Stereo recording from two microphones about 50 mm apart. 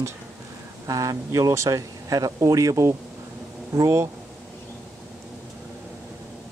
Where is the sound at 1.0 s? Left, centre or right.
Right.